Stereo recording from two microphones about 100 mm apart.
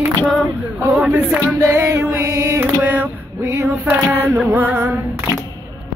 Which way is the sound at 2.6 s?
15° right (ahead or behind).